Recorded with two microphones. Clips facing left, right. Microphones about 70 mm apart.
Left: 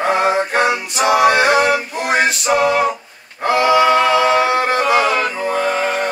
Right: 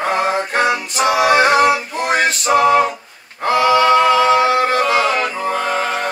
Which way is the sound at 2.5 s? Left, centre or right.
Centre.